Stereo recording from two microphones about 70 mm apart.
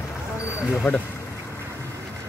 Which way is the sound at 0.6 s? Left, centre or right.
Centre.